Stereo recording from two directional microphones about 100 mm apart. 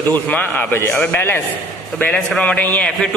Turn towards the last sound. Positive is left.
turn(degrees=15)  # may be behind; listen again after turning